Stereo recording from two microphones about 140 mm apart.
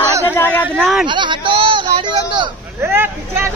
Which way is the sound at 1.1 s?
35° right (ahead or behind).